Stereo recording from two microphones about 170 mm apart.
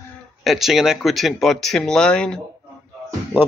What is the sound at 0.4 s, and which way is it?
Speech, centre (ahead or behind).